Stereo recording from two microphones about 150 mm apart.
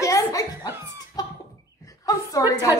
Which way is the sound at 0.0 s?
20° left (ahead or behind).